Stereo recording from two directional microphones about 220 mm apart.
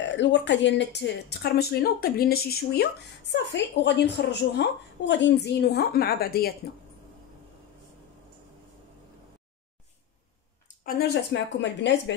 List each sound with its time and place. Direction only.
0.0 s speech: 55° left (ahead or behind)
10.9 s speech: 50° left (ahead or behind)